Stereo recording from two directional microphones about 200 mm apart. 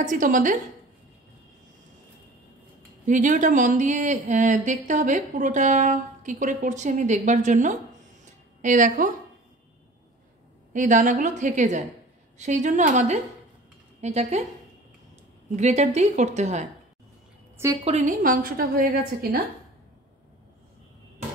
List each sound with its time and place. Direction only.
0.0 s speech: 40° right (ahead or behind)
3.1 s speech: 40° right (ahead or behind)
10.7 s speech: 40° right (ahead or behind)
15.5 s speech: 35° right (ahead or behind)
17.8 s a woman's voice: 35° right (ahead or behind)